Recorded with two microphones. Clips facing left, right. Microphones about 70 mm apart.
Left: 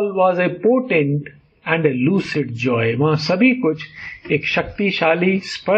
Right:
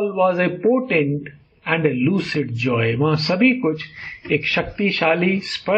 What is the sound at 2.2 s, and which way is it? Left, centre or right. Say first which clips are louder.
Speech: left 2 dB; centre.